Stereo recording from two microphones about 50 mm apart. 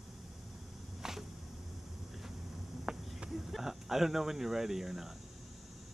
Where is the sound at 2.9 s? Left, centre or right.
Centre.